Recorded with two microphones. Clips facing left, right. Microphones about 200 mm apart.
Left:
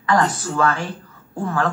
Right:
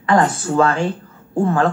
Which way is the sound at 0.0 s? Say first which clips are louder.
Right 3 dB; 30° right (ahead or behind).